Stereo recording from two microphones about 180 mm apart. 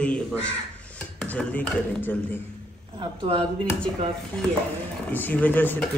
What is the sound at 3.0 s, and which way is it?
Speech, 30° right (ahead or behind).